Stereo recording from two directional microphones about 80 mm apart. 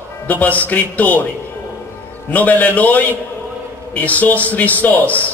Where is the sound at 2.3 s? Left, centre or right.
Centre.